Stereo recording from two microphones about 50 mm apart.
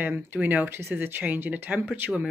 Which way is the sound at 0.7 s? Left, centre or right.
Right.